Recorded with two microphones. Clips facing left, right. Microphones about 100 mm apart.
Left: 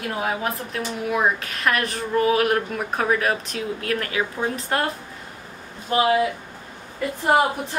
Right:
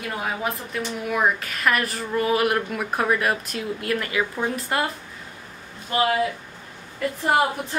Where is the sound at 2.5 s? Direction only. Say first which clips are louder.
Left 2 dB; 40° left (ahead or behind).